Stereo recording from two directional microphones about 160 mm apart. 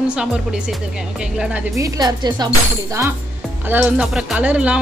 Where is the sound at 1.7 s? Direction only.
20° right (ahead or behind).